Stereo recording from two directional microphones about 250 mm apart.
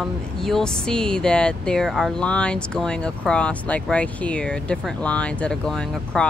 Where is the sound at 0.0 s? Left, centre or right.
Centre.